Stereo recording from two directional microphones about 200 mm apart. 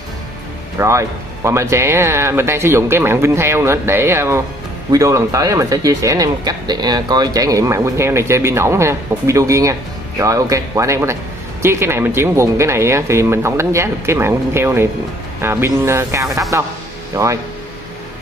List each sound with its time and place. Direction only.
0.7 s speech: 15° right (ahead or behind)